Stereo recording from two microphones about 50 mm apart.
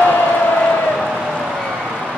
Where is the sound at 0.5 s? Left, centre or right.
Centre.